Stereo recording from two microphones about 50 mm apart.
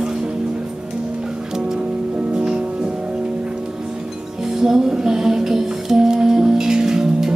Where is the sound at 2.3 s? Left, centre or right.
Centre.